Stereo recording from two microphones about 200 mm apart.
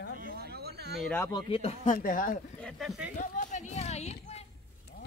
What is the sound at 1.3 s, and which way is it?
Speech, 30° left (ahead or behind).